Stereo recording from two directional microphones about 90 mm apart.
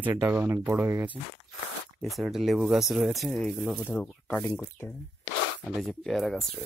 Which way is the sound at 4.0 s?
15° left (ahead or behind).